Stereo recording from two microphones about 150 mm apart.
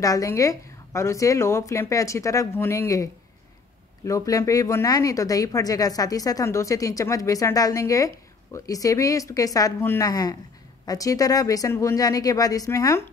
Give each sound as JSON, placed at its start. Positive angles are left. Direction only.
{"t": 0.0, "sound": "speech", "side_deg": 20}